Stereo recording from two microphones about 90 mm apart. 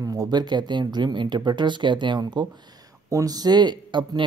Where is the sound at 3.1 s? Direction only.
45° right (ahead or behind); by 4.2 s 60° right (ahead or behind).